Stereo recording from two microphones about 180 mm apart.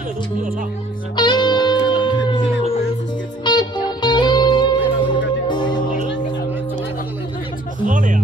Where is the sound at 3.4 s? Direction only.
25° left (ahead or behind).